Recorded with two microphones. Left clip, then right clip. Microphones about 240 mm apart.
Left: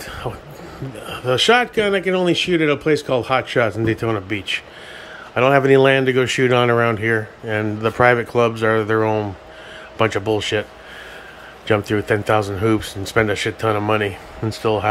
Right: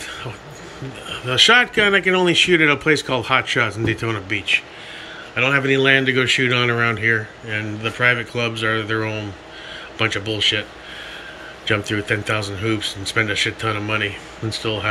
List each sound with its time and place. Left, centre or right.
1.0 s speech: centre